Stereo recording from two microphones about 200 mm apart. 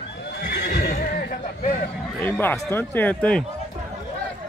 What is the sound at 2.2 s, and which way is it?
Speech, 10° left (ahead or behind).